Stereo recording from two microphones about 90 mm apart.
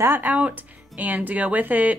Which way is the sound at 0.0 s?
20° right (ahead or behind).